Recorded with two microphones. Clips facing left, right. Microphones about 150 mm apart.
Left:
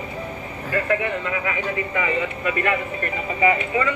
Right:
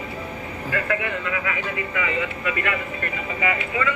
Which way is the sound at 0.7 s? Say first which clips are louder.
Left 4 dB; 35° left (ahead or behind).